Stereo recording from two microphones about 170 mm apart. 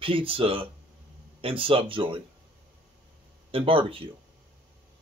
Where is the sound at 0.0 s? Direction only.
30° right (ahead or behind).